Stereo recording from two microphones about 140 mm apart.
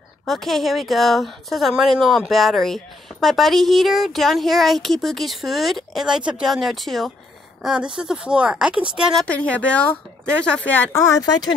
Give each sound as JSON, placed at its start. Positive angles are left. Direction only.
{"t": 0.2, "sound": "a woman's voice", "side_deg": 0}
{"t": 9.2, "sound": "speech", "side_deg": 10}